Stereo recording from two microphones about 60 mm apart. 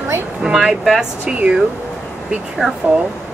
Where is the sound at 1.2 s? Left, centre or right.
Centre.